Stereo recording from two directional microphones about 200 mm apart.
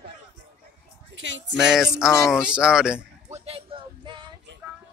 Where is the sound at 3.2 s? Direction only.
30° right (ahead or behind).